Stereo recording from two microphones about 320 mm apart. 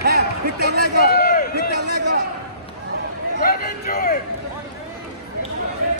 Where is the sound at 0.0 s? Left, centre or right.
Right.